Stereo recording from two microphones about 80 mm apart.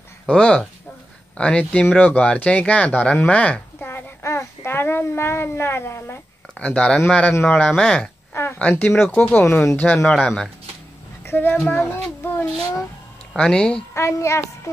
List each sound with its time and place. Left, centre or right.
0.3 s speech: centre
3.8 s a child's voice: left
6.5 s speech: centre
9.5 s speech: left
10.0 s speech: centre
11.2 s speech: left
13.4 s speech: centre
13.9 s speech: left